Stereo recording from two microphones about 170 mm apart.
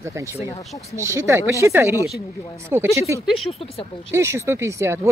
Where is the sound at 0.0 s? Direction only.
15° right (ahead or behind).